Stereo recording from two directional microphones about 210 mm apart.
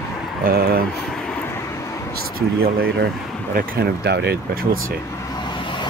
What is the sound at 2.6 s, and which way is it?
Speech, 45° right (ahead or behind).